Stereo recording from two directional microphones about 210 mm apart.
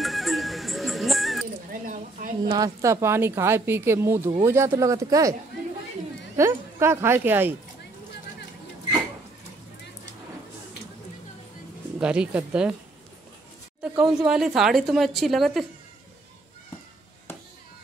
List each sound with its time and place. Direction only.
0.0 s music: centre (ahead or behind)
1.7 s a sound: 40° right (ahead or behind)
2.4 s speech: 20° right (ahead or behind)
6.3 s speech: 15° right (ahead or behind)
12.0 s a woman's voice: 5° right (ahead or behind)
13.9 s a woman's voice: 5° right (ahead or behind)